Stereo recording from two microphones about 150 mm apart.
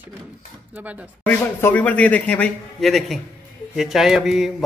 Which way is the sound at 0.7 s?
10° right (ahead or behind).